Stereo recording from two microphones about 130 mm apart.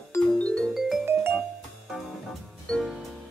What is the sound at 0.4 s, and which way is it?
Music, 10° left (ahead or behind).